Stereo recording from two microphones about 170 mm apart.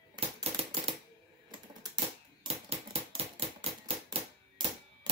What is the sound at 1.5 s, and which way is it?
Typewriter, 30° right (ahead or behind).